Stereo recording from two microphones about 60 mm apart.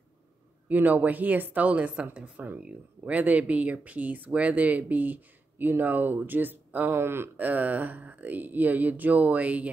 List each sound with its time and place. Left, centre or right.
0.7 s speech: right
7.3 s speech: right